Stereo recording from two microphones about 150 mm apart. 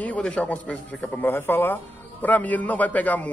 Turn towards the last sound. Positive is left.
turn(degrees=10)  # may be behind; listen again after turning